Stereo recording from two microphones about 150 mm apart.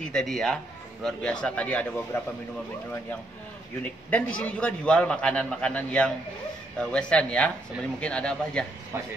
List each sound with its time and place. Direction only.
0.0 s a man's voice: 5° left (ahead or behind)
3.8 s a man's voice: 10° left (ahead or behind)
8.9 s speech: 15° right (ahead or behind)